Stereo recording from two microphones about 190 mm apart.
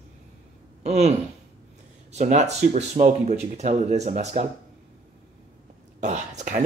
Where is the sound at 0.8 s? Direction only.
35° right (ahead or behind).